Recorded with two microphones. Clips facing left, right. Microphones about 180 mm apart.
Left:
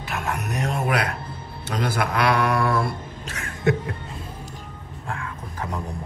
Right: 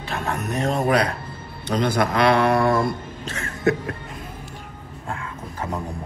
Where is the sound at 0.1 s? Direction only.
35° right (ahead or behind).